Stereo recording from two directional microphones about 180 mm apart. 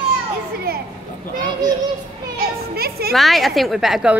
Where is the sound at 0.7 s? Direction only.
55° right (ahead or behind).